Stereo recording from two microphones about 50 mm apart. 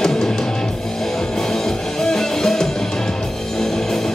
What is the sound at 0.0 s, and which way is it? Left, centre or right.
Music, centre.